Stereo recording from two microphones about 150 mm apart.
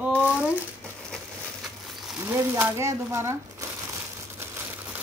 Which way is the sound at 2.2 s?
15° right (ahead or behind).